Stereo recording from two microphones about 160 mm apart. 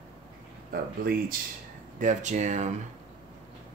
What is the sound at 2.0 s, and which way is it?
Speech, 50° right (ahead or behind).